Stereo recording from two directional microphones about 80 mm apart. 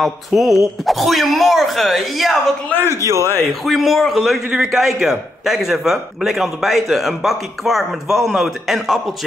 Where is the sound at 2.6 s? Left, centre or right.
Left.